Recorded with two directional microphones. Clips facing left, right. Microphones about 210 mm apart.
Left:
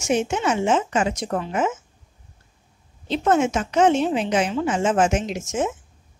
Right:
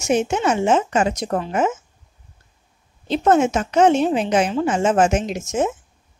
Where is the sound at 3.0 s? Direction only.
40° right (ahead or behind).